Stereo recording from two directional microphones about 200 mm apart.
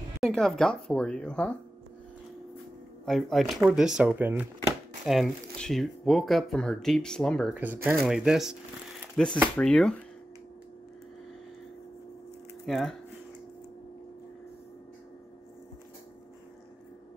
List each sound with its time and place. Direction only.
0.2 s speech: centre (ahead or behind)
3.1 s speech: centre (ahead or behind)
7.5 s speech: 10° right (ahead or behind)
12.6 s speech: centre (ahead or behind)